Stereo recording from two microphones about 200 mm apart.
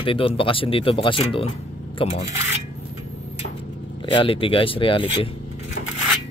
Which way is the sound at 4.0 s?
25° left (ahead or behind).